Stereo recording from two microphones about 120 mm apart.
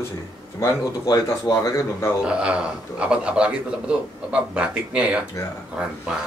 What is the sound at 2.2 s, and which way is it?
A man's voice, 10° right (ahead or behind).